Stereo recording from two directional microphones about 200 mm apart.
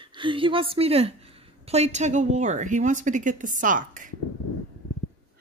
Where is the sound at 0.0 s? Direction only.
25° right (ahead or behind); by 4.1 s 40° right (ahead or behind).